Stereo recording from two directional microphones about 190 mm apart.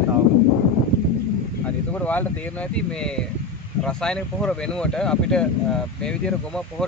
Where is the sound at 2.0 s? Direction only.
10° left (ahead or behind).